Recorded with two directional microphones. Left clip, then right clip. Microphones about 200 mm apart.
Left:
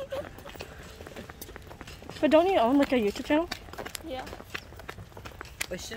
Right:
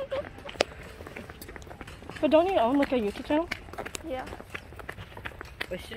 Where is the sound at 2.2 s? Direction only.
25° left (ahead or behind).